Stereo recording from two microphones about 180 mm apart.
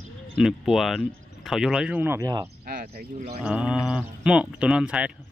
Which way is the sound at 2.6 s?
55° right (ahead or behind).